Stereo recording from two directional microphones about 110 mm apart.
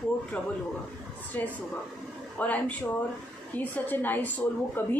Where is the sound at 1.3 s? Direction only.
15° left (ahead or behind).